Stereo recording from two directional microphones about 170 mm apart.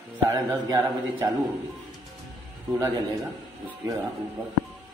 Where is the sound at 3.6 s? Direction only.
20° right (ahead or behind).